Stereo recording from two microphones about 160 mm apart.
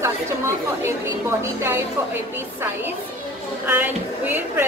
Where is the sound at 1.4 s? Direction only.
15° right (ahead or behind).